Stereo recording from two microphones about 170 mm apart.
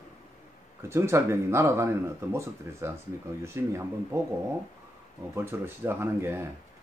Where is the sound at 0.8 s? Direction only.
15° right (ahead or behind).